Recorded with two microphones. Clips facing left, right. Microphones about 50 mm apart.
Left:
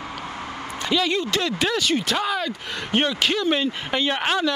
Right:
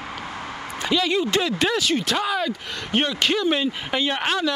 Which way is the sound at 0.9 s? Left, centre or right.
Centre.